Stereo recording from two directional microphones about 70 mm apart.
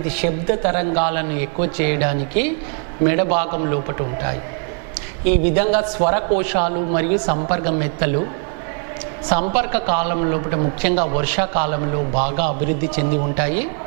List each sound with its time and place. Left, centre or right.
0.2 s a woman's voice: centre
9.3 s a woman's voice: centre